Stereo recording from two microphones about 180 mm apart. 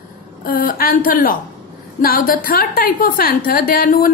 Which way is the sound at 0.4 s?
50° left (ahead or behind).